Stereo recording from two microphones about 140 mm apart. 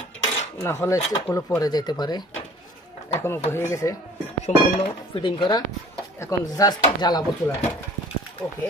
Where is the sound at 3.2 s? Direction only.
15° left (ahead or behind).